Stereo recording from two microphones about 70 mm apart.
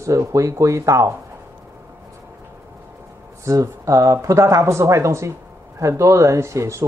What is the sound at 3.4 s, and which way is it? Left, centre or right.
A woman's voice, right.